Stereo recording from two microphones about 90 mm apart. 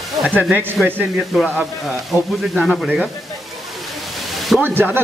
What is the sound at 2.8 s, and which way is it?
Speech, 5° right (ahead or behind).